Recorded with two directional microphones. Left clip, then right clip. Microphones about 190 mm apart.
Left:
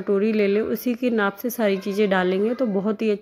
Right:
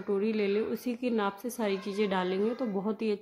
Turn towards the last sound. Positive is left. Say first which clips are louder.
# left 9 dB
turn(degrees=15)  # may be behind; listen again after turning